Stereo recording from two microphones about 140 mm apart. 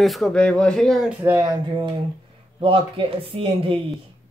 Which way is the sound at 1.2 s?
20° right (ahead or behind).